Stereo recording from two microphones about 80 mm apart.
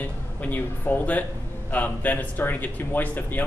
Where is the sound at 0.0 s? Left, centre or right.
Left.